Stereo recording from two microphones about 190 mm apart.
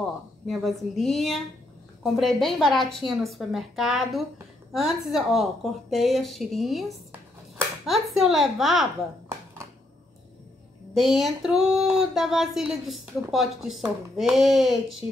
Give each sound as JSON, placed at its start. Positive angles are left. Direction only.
{"t": 0.5, "sound": "a woman's voice", "side_deg": 0}
{"t": 11.0, "sound": "a woman's voice", "side_deg": 0}